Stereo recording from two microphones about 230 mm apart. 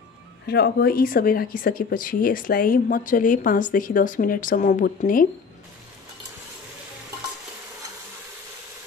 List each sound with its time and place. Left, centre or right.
0.5 s speech: left